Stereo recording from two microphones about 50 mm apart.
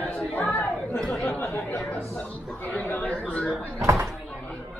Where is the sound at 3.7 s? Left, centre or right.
Right.